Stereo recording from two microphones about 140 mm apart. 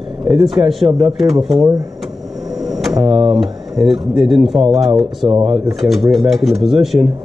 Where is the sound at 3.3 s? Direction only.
5° right (ahead or behind).